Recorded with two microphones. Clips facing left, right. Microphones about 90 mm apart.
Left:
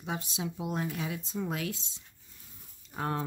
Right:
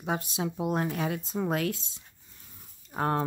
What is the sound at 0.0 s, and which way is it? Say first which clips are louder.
Speech: right 5 dB; 55° right (ahead or behind).